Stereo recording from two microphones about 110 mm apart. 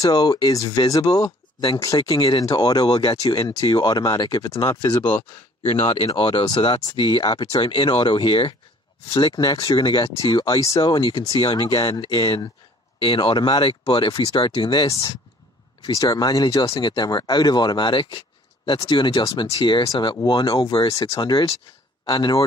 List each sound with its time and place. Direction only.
0.0 s speech: 35° left (ahead or behind)
5.6 s speech: 55° left (ahead or behind)
14.9 s speech: 35° left (ahead or behind)
21.0 s speech: 45° left (ahead or behind)